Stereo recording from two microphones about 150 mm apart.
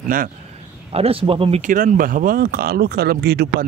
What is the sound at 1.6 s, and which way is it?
Speech, 60° right (ahead or behind).